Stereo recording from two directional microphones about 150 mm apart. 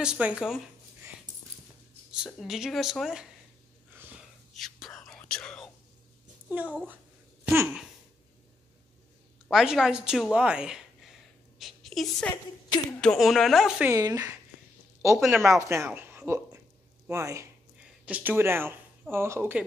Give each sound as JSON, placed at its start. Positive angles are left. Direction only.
{"t": 0.0, "sound": "speech", "side_deg": -5}
{"t": 2.1, "sound": "speech", "side_deg": -5}
{"t": 4.6, "sound": "whispering", "side_deg": 0}
{"t": 6.5, "sound": "speech", "side_deg": -10}
{"t": 9.5, "sound": "speech", "side_deg": 0}
{"t": 13.8, "sound": "a woman's voice", "side_deg": -20}
{"t": 15.2, "sound": "a woman's voice", "side_deg": -15}
{"t": 17.7, "sound": "speech", "side_deg": -10}